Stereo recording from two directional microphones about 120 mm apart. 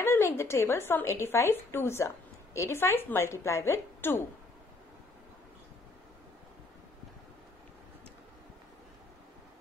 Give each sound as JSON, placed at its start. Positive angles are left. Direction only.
{"t": 0.0, "sound": "a woman's voice", "side_deg": 20}